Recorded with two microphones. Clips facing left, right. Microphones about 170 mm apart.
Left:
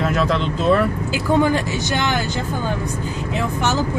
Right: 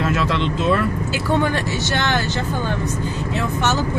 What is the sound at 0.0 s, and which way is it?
Speech, centre (ahead or behind).